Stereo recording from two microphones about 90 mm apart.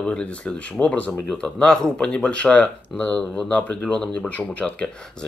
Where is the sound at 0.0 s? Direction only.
10° left (ahead or behind).